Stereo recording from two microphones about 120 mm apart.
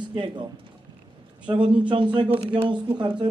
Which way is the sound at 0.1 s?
40° right (ahead or behind).